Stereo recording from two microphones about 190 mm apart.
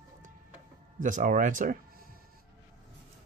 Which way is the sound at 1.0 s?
45° right (ahead or behind).